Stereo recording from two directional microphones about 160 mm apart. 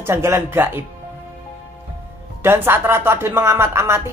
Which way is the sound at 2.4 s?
15° right (ahead or behind).